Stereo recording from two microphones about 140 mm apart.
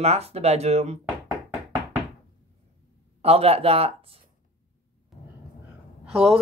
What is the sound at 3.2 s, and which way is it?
Speech, 45° right (ahead or behind).